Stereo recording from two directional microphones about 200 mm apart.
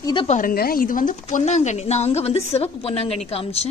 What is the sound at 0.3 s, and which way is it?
A woman's voice, 45° left (ahead or behind).